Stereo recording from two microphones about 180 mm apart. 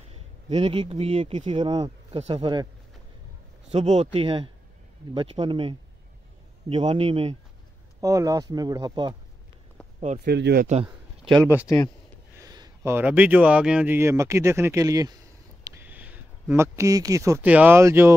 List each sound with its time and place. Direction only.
0.5 s speech: 35° right (ahead or behind)
3.7 s speech: 35° right (ahead or behind)
8.0 s speech: 20° right (ahead or behind)
9.9 s speech: 40° right (ahead or behind)
10.2 s speech: 65° right (ahead or behind)
10.7 s a sound: 30° right (ahead or behind)
12.4 s speech: 20° right (ahead or behind)